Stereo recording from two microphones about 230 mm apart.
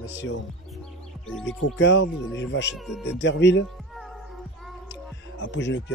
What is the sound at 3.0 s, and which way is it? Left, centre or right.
Speech, left.